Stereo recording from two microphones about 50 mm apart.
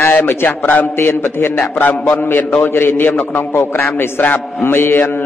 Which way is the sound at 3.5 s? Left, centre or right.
Left.